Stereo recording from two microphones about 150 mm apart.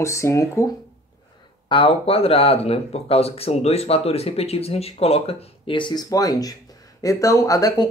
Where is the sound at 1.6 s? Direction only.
35° left (ahead or behind).